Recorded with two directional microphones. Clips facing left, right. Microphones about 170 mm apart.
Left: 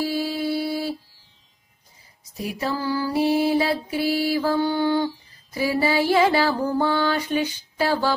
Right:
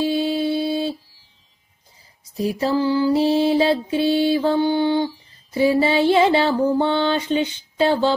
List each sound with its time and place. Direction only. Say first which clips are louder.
0.0 s mantra: right 4 dB; 20° right (ahead or behind)
2.3 s mantra: right 7 dB; 30° right (ahead or behind)